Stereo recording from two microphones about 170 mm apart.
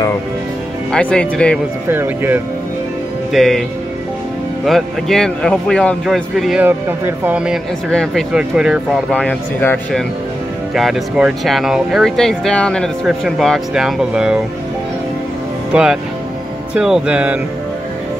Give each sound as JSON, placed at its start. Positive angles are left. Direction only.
{"t": 0.9, "sound": "speech", "side_deg": 5}
{"t": 1.9, "sound": "speech", "side_deg": -10}
{"t": 3.3, "sound": "speech", "side_deg": 0}
{"t": 4.6, "sound": "speech", "side_deg": 0}
{"t": 6.6, "sound": "speech", "side_deg": -10}
{"t": 9.1, "sound": "speech", "side_deg": 5}
{"t": 15.7, "sound": "speech", "side_deg": -5}